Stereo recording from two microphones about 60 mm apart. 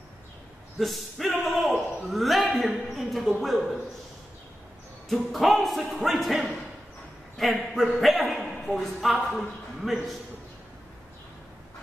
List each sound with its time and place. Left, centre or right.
0.7 s a man's voice: centre
5.1 s speech: centre